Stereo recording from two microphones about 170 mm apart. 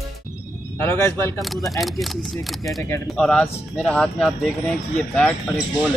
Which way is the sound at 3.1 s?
5° left (ahead or behind).